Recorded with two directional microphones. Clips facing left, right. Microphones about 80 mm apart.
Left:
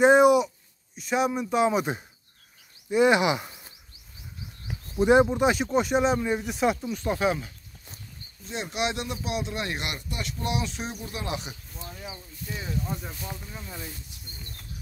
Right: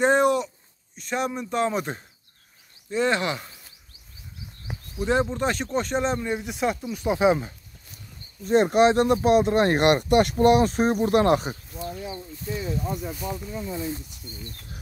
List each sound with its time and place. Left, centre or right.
0.0 s a sound: centre
0.9 s speech: centre
4.9 s speech: centre
7.0 s speech: centre
8.5 s speech: right